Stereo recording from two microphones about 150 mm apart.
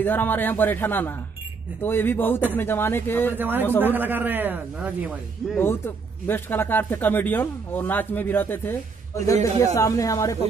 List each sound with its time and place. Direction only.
0.0 s speech: 15° left (ahead or behind)
3.3 s a man's voice: 10° right (ahead or behind)
5.6 s a woman's voice: 15° left (ahead or behind)